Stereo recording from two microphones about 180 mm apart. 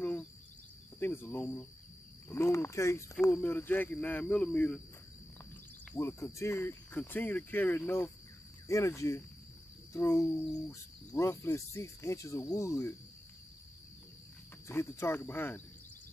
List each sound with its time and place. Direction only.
0.0 s a sound: 10° left (ahead or behind)
0.9 s cricket: 10° left (ahead or behind)
2.2 s speech: 15° left (ahead or behind)
5.9 s speech: 15° left (ahead or behind)
14.7 s speech: 15° left (ahead or behind)